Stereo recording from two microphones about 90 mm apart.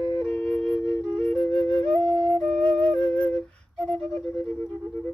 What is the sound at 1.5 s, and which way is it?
Flute, 90° right.